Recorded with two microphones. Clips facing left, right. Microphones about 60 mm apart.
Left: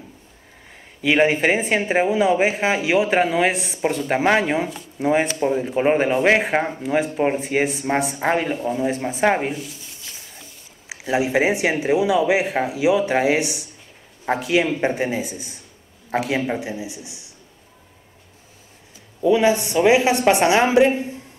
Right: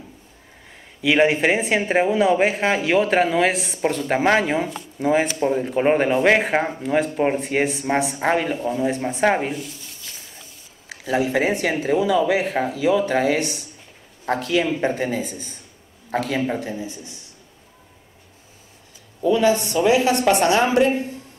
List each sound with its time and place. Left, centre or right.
1.0 s speech: centre
10.9 s speech: centre
19.2 s a woman's voice: centre